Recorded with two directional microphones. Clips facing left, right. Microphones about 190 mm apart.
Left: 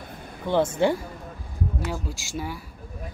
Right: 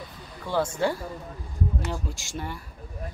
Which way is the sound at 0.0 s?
55° left (ahead or behind).